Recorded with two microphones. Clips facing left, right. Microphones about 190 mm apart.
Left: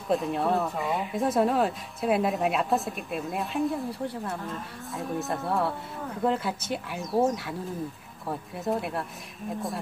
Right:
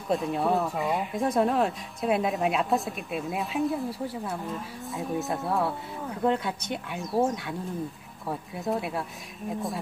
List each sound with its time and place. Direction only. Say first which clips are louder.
0.1 s speech: even; centre (ahead or behind)